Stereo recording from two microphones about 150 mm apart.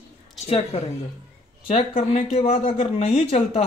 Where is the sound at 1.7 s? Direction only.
40° left (ahead or behind).